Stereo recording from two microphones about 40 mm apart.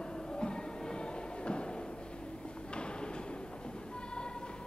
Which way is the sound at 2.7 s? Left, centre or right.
Left.